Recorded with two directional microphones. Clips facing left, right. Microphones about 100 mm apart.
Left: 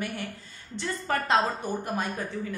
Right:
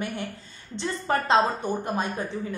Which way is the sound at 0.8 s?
25° right (ahead or behind).